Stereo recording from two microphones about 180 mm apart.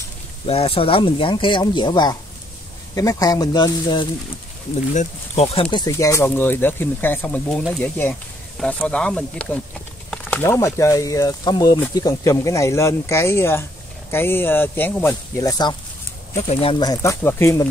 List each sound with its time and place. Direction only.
0.5 s speech: 30° left (ahead or behind)
4.9 s speech: 35° left (ahead or behind); by 15.1 s 10° left (ahead or behind)
15.4 s speech: 20° left (ahead or behind)